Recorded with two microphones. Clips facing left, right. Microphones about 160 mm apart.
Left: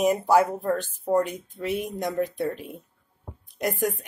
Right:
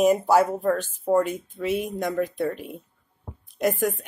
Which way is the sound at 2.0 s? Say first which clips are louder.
Even; 15° left (ahead or behind).